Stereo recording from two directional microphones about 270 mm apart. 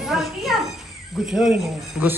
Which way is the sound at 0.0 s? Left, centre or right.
Centre.